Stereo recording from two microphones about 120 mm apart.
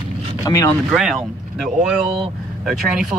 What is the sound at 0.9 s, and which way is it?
Speech, centre (ahead or behind).